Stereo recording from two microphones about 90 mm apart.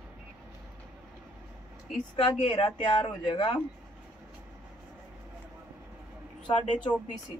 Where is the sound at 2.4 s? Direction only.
70° left (ahead or behind).